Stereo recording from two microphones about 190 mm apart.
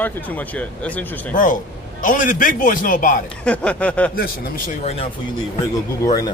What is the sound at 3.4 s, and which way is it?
Speech, 5° left (ahead or behind).